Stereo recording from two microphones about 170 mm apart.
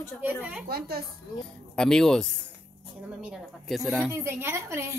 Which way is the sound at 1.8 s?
5° left (ahead or behind).